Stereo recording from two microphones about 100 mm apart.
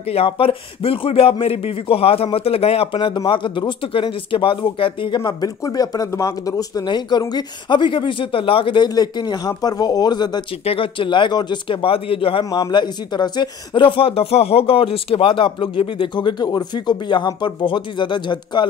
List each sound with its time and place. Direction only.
0.1 s speech: 75° left (ahead or behind); by 10.4 s 45° left (ahead or behind)
10.6 s speech: 70° left (ahead or behind)
12.4 s speech: 45° left (ahead or behind)